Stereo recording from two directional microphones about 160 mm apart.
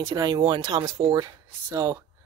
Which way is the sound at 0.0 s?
25° right (ahead or behind).